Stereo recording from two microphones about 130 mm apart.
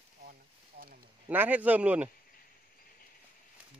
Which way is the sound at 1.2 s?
10° right (ahead or behind).